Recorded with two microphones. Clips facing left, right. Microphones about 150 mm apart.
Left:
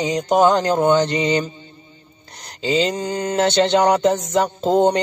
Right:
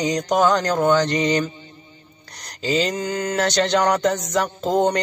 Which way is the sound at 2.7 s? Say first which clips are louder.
Left 2 dB; 30° left (ahead or behind).